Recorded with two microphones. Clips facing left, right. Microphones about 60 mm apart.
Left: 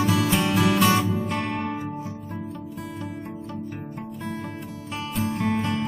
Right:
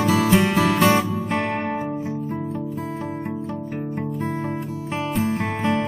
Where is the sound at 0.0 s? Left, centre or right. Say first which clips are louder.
Right 4 dB; right.